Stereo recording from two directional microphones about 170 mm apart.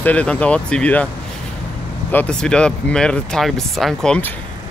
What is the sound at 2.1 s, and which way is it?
Speech, 10° left (ahead or behind).